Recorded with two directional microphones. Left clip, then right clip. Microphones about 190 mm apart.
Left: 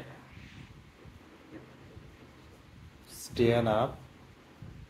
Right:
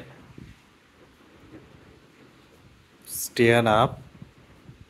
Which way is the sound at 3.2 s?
40° right (ahead or behind).